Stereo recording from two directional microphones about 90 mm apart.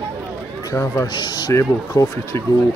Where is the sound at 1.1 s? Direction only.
55° left (ahead or behind).